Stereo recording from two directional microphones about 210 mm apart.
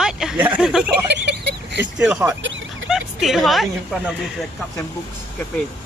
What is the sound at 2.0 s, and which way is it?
Speech, 10° right (ahead or behind).